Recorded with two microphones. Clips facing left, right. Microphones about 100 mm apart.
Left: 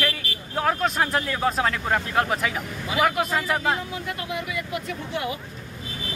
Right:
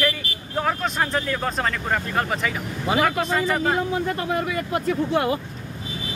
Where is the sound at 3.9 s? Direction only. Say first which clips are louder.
Right 7 dB; 40° right (ahead or behind).